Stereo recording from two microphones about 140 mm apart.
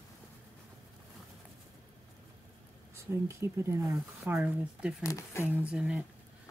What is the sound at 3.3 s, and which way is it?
Speech, 20° right (ahead or behind).